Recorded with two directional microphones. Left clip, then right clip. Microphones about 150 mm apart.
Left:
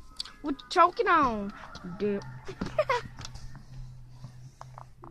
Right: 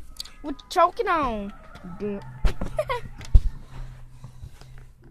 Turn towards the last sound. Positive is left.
turn(degrees=5)  # may be behind; listen again after turning